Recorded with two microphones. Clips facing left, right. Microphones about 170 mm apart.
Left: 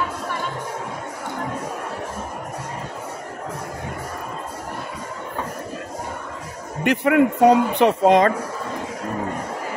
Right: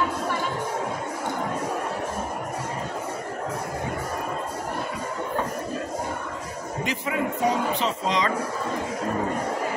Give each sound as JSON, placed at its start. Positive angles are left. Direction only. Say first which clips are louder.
{"t": 6.8, "sound": "speech", "louder": "left 11 dB", "side_deg": 65}